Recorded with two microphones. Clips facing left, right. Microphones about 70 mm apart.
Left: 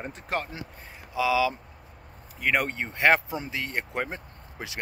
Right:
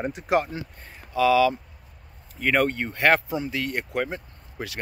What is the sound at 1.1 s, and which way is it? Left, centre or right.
Speech, centre.